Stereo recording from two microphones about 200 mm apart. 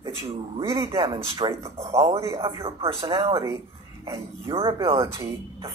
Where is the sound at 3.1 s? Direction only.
15° right (ahead or behind).